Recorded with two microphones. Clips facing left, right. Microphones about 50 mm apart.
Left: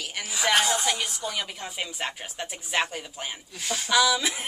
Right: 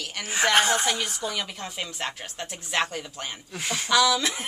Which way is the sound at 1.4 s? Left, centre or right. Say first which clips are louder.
Even; centre.